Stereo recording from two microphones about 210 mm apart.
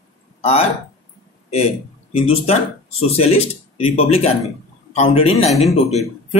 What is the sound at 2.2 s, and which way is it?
A man's voice, 30° left (ahead or behind).